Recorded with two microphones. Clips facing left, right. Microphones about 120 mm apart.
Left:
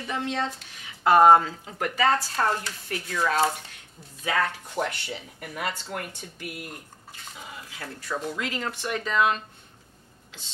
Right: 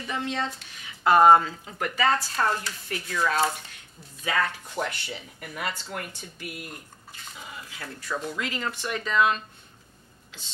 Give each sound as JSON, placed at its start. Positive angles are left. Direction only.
{"t": 0.0, "sound": "a woman's voice", "side_deg": 45}
{"t": 5.2, "sound": "a woman's voice", "side_deg": 40}
{"t": 8.4, "sound": "speech", "side_deg": 45}